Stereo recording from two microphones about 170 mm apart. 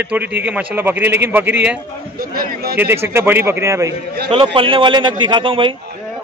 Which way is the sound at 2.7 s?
15° right (ahead or behind).